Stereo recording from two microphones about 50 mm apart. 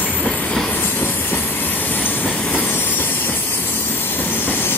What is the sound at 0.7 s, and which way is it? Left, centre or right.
Train, left.